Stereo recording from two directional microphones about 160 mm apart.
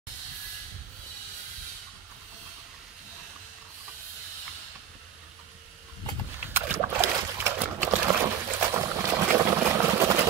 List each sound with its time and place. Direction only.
6.5 s boat: 15° right (ahead or behind)